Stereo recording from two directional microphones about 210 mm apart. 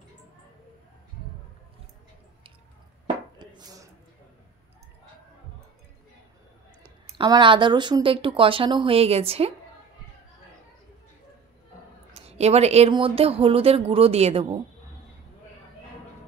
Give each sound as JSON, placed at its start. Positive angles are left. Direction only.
{"t": 3.3, "sound": "a sound", "side_deg": -20}
{"t": 6.8, "sound": "speech", "side_deg": -25}
{"t": 12.1, "sound": "speech", "side_deg": -30}